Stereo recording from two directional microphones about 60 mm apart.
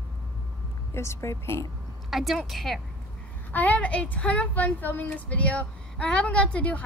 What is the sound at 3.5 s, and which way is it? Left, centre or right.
Speech, left.